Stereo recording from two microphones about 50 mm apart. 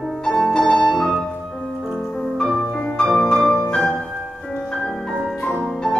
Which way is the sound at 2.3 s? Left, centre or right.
Centre.